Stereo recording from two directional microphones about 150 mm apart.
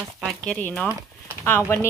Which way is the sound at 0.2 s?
5° left (ahead or behind).